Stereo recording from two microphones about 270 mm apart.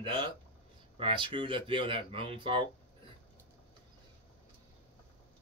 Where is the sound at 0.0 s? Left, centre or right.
Centre.